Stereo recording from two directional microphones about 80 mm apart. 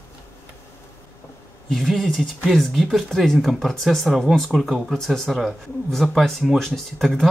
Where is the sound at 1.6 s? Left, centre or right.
Centre.